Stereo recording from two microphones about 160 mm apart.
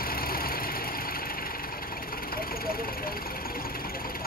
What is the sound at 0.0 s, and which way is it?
Vehicle, 65° left (ahead or behind).